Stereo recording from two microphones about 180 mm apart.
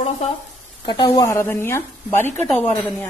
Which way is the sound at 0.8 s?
25° left (ahead or behind).